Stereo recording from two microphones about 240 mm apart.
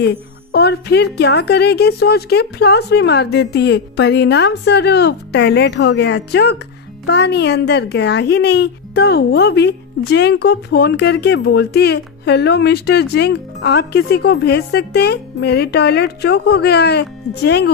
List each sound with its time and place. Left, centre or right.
0.0 s a child's voice: left